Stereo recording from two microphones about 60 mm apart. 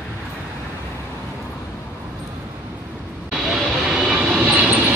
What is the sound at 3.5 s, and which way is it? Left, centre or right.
Vehicle, centre.